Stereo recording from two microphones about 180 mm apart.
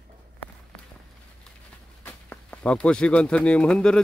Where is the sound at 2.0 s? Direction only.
10° left (ahead or behind).